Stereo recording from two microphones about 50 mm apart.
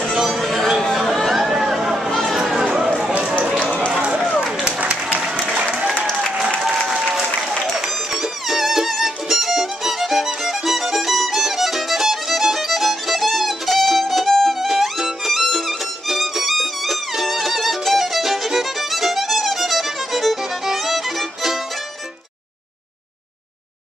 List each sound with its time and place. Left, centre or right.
0.0 s chatter: centre
2.0 s chatter: centre
2.3 s chatter: centre
4.4 s run: centre
4.7 s applause: right
7.0 s applause: centre
7.6 s music: centre